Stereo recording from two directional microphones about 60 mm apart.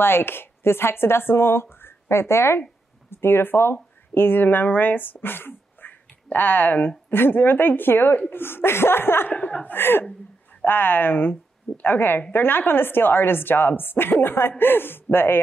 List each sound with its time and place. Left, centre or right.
0.0 s a woman's voice: left
9.3 s speech: centre
9.7 s a woman's voice: left